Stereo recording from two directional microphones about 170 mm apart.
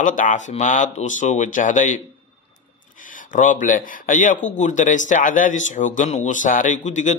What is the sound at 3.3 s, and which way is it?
Speech, 50° left (ahead or behind).